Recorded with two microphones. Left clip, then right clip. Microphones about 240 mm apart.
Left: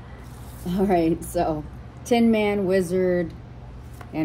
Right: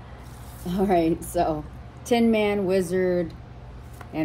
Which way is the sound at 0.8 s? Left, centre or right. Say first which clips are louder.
Left 1 dB; centre.